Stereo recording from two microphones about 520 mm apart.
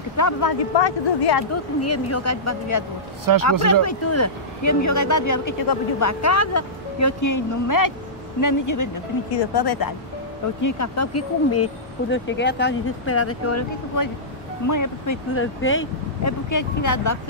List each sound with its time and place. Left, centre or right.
0.2 s speech: left
0.7 s speech: left
1.5 s speech: left
3.3 s speech: right
3.8 s speech: left
10.6 s speech: left
15.4 s speech: left
16.4 s speech: left